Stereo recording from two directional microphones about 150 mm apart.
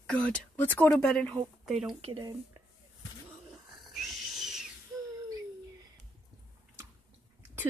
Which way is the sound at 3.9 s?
Centre (ahead or behind).